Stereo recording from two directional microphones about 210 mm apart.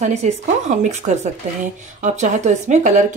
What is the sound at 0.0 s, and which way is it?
Speech, 35° right (ahead or behind).